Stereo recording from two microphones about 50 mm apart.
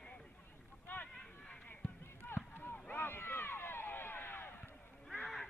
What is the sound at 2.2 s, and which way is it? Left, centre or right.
Run, left.